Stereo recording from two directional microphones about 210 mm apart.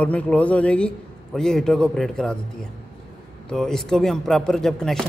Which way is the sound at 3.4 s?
Centre (ahead or behind).